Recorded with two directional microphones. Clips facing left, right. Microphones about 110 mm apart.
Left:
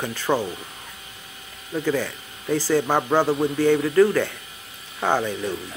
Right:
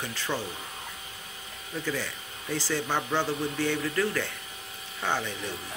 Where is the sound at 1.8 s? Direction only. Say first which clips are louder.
Left 9 dB; 50° left (ahead or behind).